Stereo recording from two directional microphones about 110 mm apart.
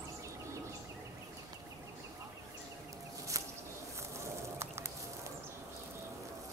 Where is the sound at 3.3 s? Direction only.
30° right (ahead or behind).